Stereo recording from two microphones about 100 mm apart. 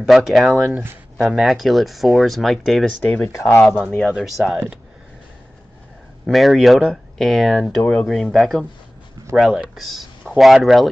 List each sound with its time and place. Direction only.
0.0 s speech: centre (ahead or behind)
3.3 s speech: 25° left (ahead or behind)
4.0 s speech: centre (ahead or behind)
6.2 s speech: centre (ahead or behind)